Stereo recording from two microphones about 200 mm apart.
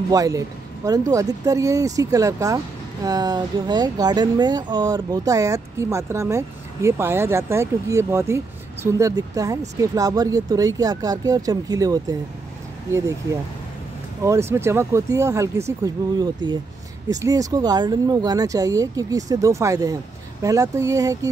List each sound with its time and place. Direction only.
0.1 s speech: 15° right (ahead or behind)
14.2 s speech: 15° right (ahead or behind)